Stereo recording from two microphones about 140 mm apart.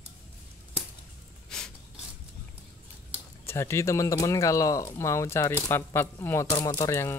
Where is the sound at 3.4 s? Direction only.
20° left (ahead or behind).